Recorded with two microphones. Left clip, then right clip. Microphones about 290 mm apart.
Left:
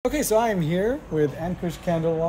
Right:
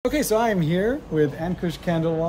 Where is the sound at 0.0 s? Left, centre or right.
Centre.